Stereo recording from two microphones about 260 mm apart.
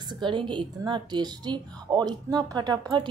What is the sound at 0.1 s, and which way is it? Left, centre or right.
Speech, centre.